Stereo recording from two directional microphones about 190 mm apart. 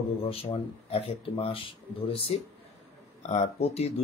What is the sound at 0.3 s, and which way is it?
Speech, 30° left (ahead or behind).